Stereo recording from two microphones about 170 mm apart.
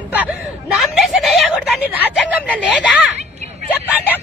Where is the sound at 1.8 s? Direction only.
10° right (ahead or behind).